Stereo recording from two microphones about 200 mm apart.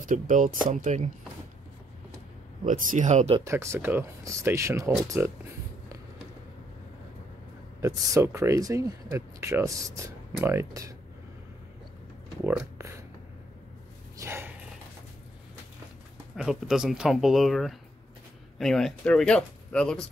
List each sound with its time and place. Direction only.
0.1 s speech: 40° right (ahead or behind)
2.6 s speech: 40° right (ahead or behind)
3.3 s speech: 15° right (ahead or behind)
7.8 s speech: 15° right (ahead or behind)
12.4 s speech: 10° right (ahead or behind)
14.1 s dog: 10° right (ahead or behind)
16.3 s speech: 5° right (ahead or behind)